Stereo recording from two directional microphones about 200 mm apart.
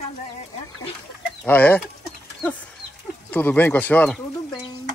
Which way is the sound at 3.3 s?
10° left (ahead or behind).